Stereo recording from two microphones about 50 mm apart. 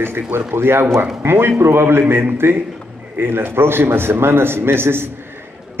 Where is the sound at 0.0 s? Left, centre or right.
Right.